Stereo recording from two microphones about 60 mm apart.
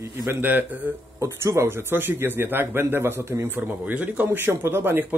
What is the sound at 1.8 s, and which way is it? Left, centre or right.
Speech, right.